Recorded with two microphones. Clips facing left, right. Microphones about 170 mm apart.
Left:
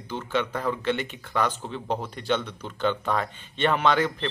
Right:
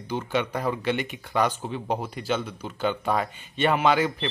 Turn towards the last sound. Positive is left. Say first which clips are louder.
# right 1 dB
turn(degrees=-10)  # may be behind; listen again after turning